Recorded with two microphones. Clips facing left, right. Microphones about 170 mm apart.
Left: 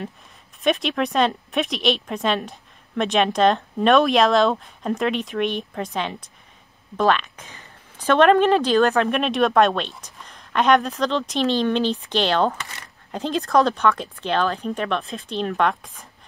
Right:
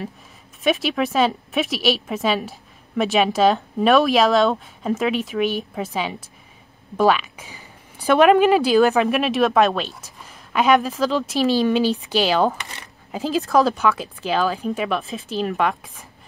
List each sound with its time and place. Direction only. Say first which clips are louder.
0.7 s a woman's voice: right 1 dB; 5° right (ahead or behind)
12.5 s speech: even; 20° right (ahead or behind)
13.1 s speech: right 1 dB; 5° right (ahead or behind)